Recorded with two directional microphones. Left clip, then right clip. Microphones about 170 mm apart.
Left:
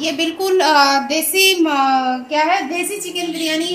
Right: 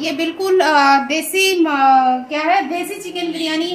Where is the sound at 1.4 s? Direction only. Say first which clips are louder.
Even; 5° left (ahead or behind).